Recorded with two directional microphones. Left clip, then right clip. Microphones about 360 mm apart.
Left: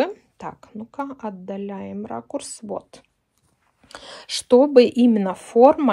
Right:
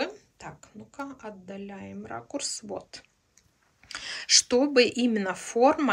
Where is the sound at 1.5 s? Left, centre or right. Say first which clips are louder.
Left 10 dB; centre.